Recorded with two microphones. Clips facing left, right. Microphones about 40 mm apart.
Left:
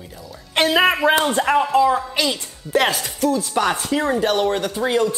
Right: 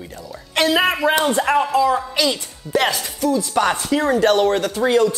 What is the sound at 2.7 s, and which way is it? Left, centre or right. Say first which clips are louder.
Speech: even; left.